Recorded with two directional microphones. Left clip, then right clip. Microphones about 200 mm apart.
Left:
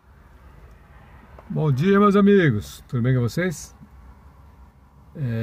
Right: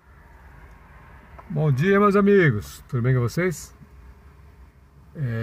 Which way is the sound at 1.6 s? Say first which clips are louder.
Even; 15° left (ahead or behind).